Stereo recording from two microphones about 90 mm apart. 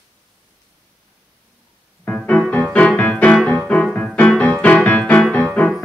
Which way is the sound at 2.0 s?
15° left (ahead or behind).